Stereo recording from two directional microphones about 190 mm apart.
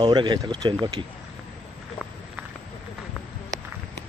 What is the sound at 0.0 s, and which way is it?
Speech, 25° right (ahead or behind).